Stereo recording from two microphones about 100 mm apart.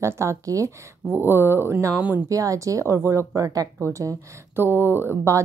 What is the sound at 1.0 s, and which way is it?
Speech, 20° right (ahead or behind).